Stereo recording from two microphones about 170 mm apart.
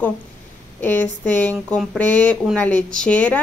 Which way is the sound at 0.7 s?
10° left (ahead or behind).